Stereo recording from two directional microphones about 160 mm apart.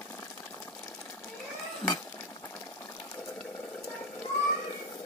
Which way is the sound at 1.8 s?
5° left (ahead or behind).